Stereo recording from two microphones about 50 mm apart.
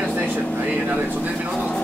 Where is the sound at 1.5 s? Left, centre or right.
Left.